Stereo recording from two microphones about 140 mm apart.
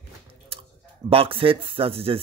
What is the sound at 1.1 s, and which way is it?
Speech, 40° right (ahead or behind).